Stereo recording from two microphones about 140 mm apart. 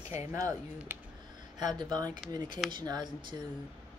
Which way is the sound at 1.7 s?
30° right (ahead or behind).